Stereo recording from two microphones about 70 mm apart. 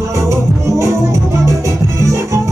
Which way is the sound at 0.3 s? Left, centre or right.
Right.